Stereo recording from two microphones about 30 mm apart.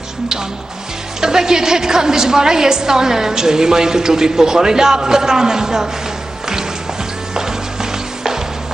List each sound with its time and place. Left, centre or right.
1.2 s a woman's voice: right